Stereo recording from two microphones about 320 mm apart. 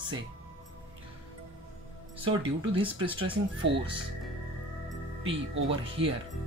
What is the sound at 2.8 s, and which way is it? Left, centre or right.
Speech, centre.